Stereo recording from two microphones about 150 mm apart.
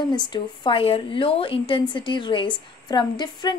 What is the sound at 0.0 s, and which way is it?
A woman's voice, 30° left (ahead or behind).